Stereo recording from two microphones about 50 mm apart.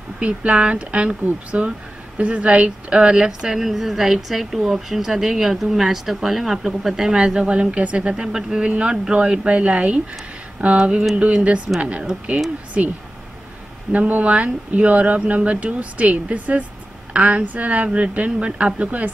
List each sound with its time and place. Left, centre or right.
0.2 s speech: right
13.9 s a woman's voice: right